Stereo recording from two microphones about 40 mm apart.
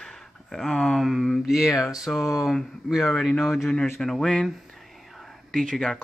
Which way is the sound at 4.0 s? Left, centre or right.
Centre.